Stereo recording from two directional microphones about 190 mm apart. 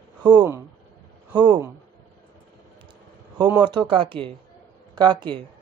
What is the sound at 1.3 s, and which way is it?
Speech, 20° right (ahead or behind).